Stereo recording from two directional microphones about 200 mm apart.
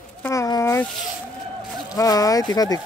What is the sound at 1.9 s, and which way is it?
Speech, 15° left (ahead or behind).